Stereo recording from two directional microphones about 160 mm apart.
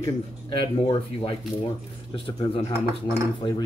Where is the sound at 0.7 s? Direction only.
35° left (ahead or behind).